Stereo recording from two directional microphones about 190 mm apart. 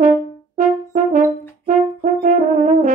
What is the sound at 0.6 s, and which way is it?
Brass instrument, 45° right (ahead or behind).